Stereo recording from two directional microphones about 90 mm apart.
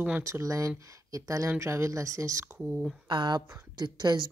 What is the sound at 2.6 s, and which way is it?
Speech, 10° right (ahead or behind).